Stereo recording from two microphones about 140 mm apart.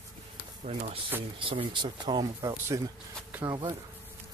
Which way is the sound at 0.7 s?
40° right (ahead or behind).